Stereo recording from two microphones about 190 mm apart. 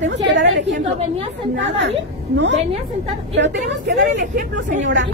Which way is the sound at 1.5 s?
70° right (ahead or behind).